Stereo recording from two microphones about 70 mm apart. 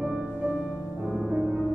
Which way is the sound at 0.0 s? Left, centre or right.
Centre.